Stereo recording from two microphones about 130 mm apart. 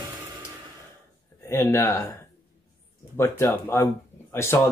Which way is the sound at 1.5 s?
20° left (ahead or behind).